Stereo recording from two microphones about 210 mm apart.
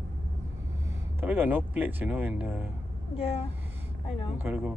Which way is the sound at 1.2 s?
10° right (ahead or behind).